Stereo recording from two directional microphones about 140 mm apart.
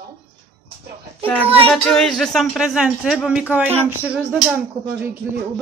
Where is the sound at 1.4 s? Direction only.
15° right (ahead or behind).